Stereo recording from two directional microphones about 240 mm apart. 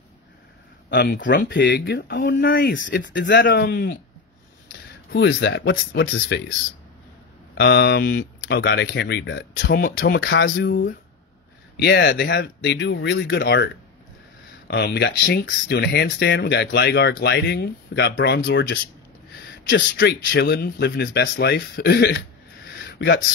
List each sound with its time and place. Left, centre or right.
0.8 s speech: left
5.1 s speech: left
7.5 s speech: left
10.2 s speech: left
14.7 s speech: left
22.8 s a sound: left